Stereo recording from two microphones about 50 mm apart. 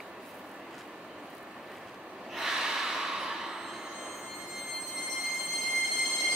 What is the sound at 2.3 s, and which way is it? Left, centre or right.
Snort, centre.